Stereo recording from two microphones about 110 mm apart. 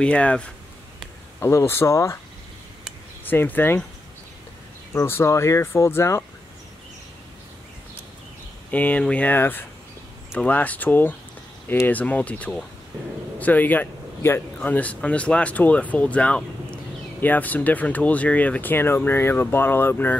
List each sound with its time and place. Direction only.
0.0 s speech: 10° left (ahead or behind)
1.4 s speech: 25° left (ahead or behind)
3.3 s speech: 15° left (ahead or behind)
4.9 s speech: 25° left (ahead or behind)
8.6 s speech: 15° left (ahead or behind)